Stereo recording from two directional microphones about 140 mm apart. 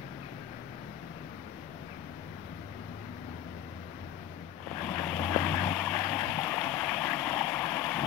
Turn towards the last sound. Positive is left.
turn(degrees=10)  # may be behind; listen again after turning